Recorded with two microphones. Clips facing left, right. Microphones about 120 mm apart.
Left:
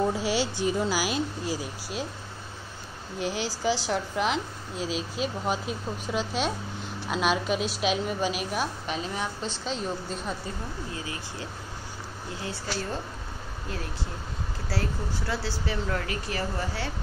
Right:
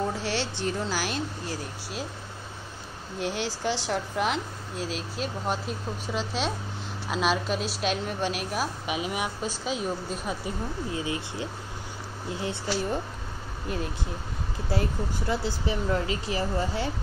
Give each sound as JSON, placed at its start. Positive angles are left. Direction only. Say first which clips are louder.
{"t": 0.0, "sound": "speech", "louder": "left 3 dB", "side_deg": 10}
{"t": 3.2, "sound": "a woman's voice", "louder": "even", "side_deg": 0}
{"t": 10.9, "sound": "speech", "louder": "right 5 dB", "side_deg": -20}
{"t": 14.7, "sound": "speech", "louder": "right 3 dB", "side_deg": -20}